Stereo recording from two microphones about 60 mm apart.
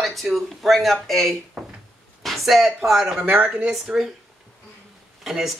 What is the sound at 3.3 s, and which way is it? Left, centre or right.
Speech, right.